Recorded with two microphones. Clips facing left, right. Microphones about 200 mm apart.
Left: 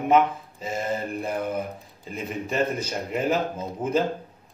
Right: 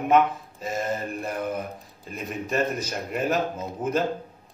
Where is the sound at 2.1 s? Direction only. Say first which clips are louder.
Even; 10° left (ahead or behind).